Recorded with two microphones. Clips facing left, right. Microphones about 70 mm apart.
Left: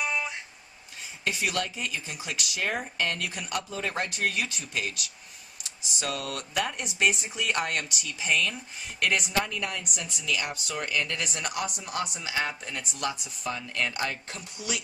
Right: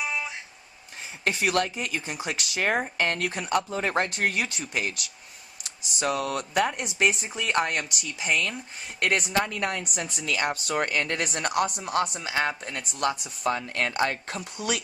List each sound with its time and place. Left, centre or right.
0.0 s plucked string instrument: centre
1.2 s speech: right
6.0 s speech: right
8.0 s speech: right
9.0 s speech: right
11.9 s speech: right